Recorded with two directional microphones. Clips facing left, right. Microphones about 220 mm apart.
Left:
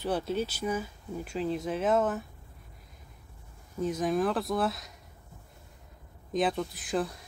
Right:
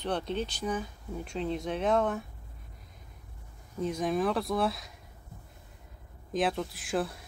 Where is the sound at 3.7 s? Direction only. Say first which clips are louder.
Left 1 dB; centre (ahead or behind).